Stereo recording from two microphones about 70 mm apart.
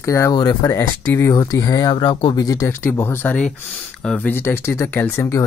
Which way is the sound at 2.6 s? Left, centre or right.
Left.